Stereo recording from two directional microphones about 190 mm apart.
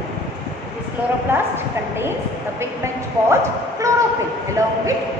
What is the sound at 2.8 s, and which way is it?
Speech, 15° right (ahead or behind).